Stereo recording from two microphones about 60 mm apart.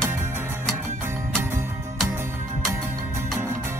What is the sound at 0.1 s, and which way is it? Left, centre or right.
Music, right.